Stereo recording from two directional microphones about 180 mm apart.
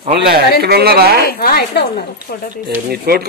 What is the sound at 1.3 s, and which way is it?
A woman's voice, 55° left (ahead or behind).